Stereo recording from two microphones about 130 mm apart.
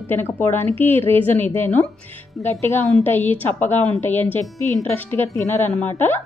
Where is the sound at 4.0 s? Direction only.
15° left (ahead or behind).